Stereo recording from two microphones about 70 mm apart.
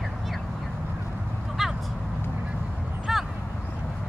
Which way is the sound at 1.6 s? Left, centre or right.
Centre.